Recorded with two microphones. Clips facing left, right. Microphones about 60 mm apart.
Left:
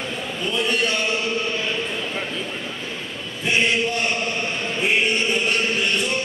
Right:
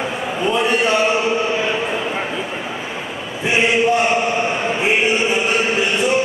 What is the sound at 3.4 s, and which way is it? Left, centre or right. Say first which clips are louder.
Chant: right 5 dB; centre.